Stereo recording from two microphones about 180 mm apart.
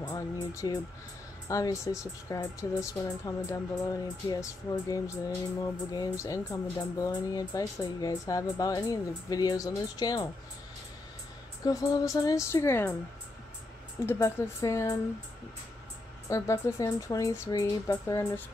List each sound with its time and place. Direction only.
0.0 s a woman's voice: 20° left (ahead or behind)
11.6 s a woman's voice: 20° left (ahead or behind)
14.0 s a woman's voice: 15° left (ahead or behind)
16.3 s a woman's voice: 15° left (ahead or behind)